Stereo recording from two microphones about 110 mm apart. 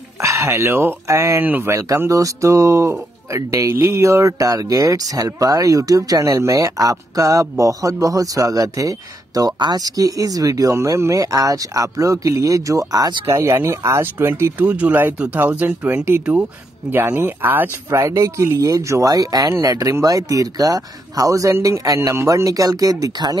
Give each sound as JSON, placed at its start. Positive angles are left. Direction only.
{"t": 0.2, "sound": "speech", "side_deg": -25}